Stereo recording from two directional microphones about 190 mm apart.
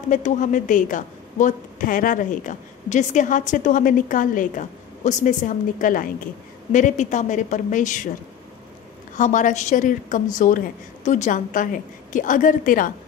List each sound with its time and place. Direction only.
0.1 s a woman's voice: 40° left (ahead or behind)
9.1 s a woman's voice: 40° left (ahead or behind)